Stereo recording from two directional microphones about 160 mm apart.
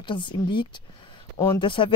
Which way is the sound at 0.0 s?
30° left (ahead or behind).